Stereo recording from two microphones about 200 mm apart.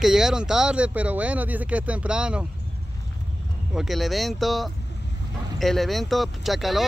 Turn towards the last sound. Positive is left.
turn(degrees=0)  # may be behind; listen again after turning